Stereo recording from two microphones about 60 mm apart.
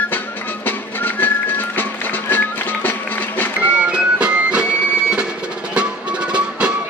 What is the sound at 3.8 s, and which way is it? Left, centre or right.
Music, centre.